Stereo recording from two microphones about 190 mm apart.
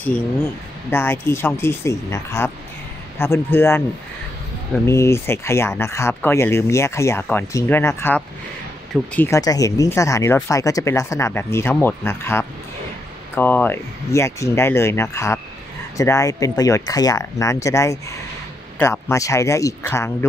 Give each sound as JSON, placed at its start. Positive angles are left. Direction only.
{"t": 0.8, "sound": "speech", "side_deg": 10}
{"t": 4.8, "sound": "speech", "side_deg": 15}